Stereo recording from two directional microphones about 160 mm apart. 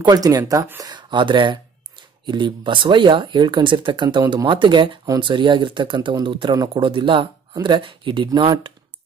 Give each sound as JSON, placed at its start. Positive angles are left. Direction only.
{"t": 0.0, "sound": "speech", "side_deg": -25}